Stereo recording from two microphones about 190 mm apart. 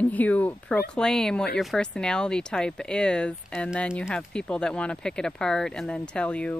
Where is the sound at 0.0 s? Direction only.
10° left (ahead or behind).